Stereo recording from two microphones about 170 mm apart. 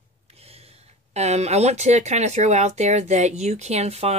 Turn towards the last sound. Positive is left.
turn(degrees=-35)  # may be behind; listen again after turning